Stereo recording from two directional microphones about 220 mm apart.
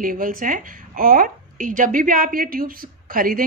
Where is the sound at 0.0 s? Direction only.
40° right (ahead or behind).